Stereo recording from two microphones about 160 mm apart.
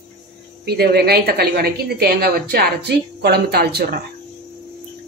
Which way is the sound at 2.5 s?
90° right.